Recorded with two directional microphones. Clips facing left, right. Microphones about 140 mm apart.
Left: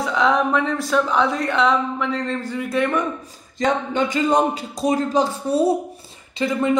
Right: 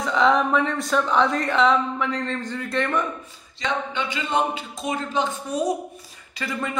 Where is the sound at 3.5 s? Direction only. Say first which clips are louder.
Left 7 dB; 45° left (ahead or behind).